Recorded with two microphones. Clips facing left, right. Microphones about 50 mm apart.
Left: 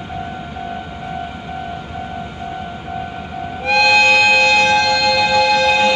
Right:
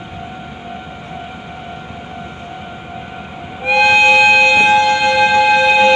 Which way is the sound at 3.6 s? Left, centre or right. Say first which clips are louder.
Right 2 dB; right.